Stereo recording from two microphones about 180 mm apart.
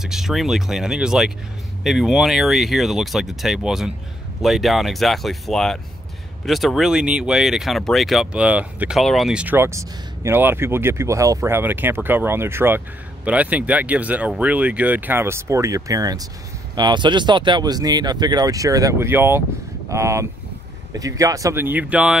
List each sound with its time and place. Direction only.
0.0 s speech: centre (ahead or behind)